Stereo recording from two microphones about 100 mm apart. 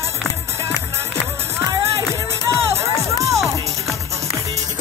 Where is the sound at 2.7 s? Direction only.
30° right (ahead or behind).